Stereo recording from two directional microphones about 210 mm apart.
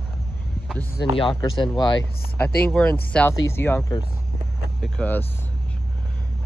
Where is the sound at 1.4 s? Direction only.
20° left (ahead or behind).